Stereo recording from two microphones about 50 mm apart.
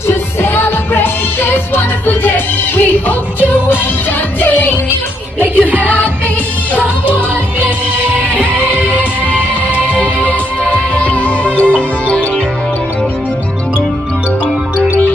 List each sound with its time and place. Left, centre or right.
0.1 s music: left
4.4 s music: left
5.7 s music: right
9.9 s music: left